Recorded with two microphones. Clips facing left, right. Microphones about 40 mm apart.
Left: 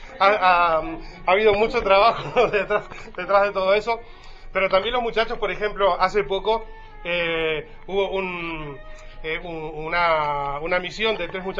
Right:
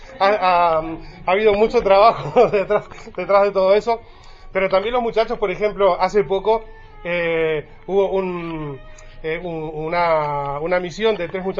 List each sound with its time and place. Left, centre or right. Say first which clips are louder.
0.1 s a man's voice: right 1 dB; left